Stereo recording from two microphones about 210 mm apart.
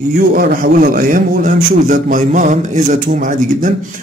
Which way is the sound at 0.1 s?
45° right (ahead or behind).